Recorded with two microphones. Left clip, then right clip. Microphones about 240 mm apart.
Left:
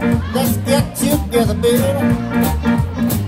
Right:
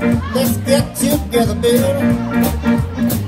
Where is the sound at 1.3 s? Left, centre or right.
Left.